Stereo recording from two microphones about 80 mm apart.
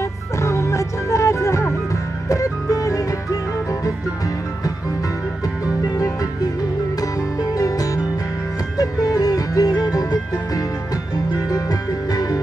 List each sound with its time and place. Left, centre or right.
0.4 s music: left
7.0 s music: left
11.4 s music: left